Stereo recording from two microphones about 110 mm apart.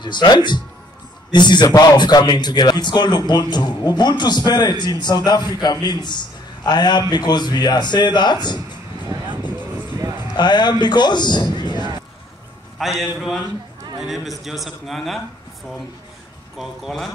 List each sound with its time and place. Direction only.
0.0 s a man's voice: 40° left (ahead or behind)
10.3 s a man's voice: 40° left (ahead or behind)
12.7 s a man's voice: centre (ahead or behind)
16.5 s a man's voice: centre (ahead or behind)